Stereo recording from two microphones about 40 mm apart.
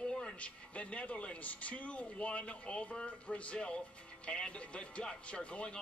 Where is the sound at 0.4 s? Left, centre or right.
Left.